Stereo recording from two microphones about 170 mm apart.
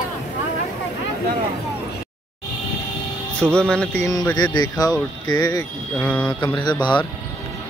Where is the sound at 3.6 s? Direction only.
5° left (ahead or behind).